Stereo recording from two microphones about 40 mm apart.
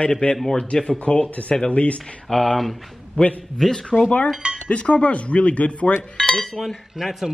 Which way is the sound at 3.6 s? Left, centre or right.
Centre.